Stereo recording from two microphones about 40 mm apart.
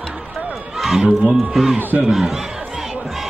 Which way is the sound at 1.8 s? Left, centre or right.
Right.